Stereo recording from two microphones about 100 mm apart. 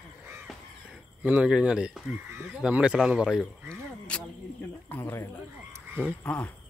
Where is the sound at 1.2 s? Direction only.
10° right (ahead or behind).